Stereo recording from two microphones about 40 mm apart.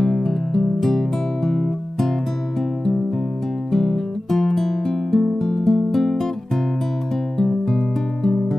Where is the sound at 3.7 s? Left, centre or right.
Centre.